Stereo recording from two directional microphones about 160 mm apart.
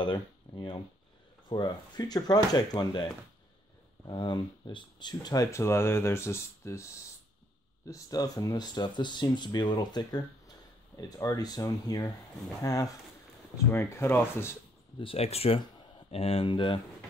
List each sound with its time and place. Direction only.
0.0 s a sound: 30° left (ahead or behind)
1.5 s speech: 25° left (ahead or behind)
4.1 s speech: 30° left (ahead or behind)
15.0 s speech: 35° left (ahead or behind)